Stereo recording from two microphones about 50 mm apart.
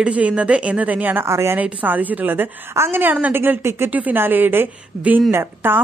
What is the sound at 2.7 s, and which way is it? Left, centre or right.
Speech, right.